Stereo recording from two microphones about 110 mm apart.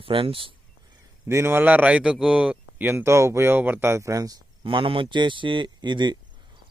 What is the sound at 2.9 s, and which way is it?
Speech, 20° right (ahead or behind).